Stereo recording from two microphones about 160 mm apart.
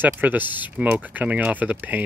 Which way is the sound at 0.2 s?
10° right (ahead or behind).